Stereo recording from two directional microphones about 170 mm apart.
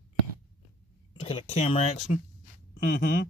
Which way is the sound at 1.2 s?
35° left (ahead or behind).